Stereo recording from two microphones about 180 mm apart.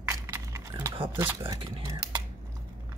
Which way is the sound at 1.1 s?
15° right (ahead or behind).